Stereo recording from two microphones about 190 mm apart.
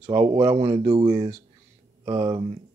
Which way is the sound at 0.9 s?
30° right (ahead or behind).